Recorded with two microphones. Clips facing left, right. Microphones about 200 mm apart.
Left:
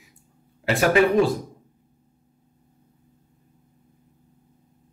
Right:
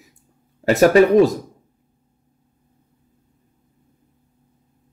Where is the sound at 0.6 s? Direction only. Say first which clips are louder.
Right 6 dB; 40° right (ahead or behind).